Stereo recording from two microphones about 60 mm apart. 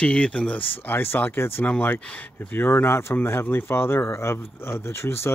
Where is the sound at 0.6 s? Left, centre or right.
Left.